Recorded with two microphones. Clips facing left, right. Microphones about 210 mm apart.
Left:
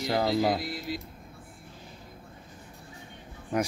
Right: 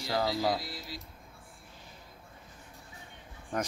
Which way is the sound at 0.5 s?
55° left (ahead or behind).